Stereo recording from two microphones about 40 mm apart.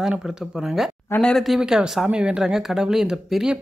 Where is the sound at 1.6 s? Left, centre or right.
Centre.